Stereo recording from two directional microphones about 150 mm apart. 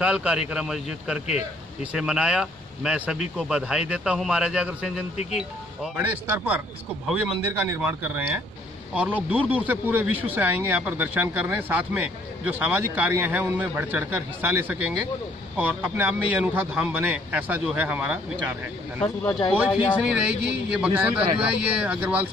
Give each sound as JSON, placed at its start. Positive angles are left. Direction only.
{"t": 0.0, "sound": "speech", "side_deg": -5}
{"t": 5.1, "sound": "speech", "side_deg": 50}
{"t": 5.9, "sound": "speech", "side_deg": -15}
{"t": 19.5, "sound": "speech", "side_deg": -5}